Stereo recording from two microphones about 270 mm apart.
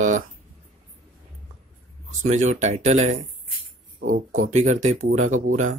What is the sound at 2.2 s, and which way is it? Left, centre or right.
Speech, right.